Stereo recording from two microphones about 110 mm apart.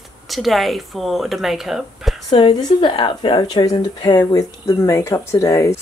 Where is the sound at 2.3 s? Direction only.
45° left (ahead or behind); by 5.7 s 25° left (ahead or behind).